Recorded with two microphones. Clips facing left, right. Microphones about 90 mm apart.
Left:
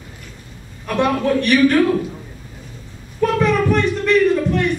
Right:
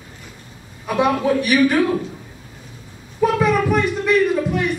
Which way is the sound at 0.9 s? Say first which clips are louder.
Even; 5° right (ahead or behind).